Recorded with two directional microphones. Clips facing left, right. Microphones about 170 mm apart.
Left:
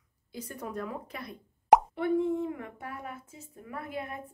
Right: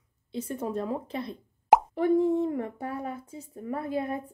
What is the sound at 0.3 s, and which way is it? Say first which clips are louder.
A woman's voice: right 7 dB; 25° right (ahead or behind).